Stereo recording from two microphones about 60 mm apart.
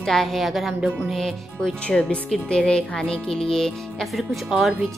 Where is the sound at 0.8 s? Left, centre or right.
Centre.